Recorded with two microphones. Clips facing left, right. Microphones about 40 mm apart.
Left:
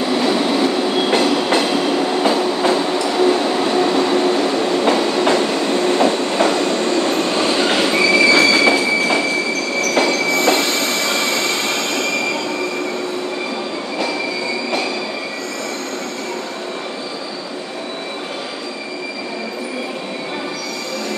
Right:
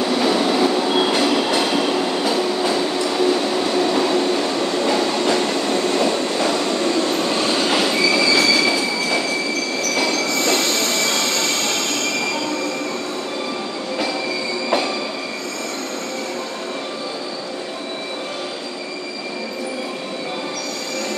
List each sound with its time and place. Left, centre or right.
0.0 s train: centre
2.7 s train: centre
5.8 s train: left
7.2 s vehicle: centre
7.6 s train: left
10.0 s train: centre